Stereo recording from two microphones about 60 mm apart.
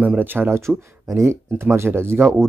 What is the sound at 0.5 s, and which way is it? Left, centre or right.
Speech, right.